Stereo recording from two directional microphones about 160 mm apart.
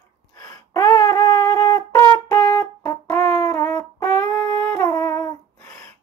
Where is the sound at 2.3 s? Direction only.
20° left (ahead or behind).